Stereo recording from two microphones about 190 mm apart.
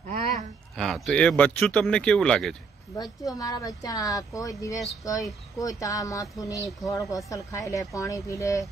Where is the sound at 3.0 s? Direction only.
20° left (ahead or behind).